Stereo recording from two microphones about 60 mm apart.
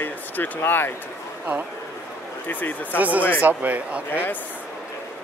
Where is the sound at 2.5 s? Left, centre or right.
Left.